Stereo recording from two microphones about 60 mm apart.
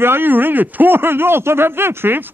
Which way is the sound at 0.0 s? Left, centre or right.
Right.